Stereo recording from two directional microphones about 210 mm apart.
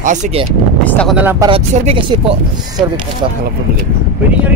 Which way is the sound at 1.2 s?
10° right (ahead or behind).